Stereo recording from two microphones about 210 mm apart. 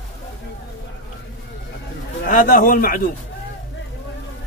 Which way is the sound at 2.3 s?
40° left (ahead or behind).